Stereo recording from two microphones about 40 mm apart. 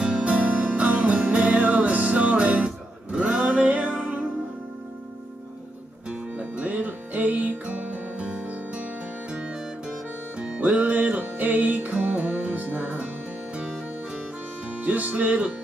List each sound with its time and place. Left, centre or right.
0.0 s music: right
6.3 s music: right
10.6 s music: right
11.1 s music: right
13.6 s music: right
14.8 s music: right